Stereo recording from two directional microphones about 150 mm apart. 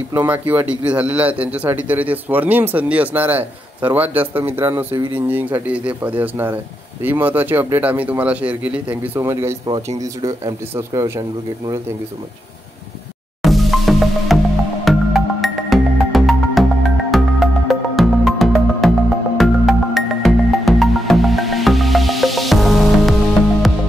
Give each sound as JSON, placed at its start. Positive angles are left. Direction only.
{"t": 0.1, "sound": "speech", "side_deg": -10}
{"t": 13.4, "sound": "music", "side_deg": 0}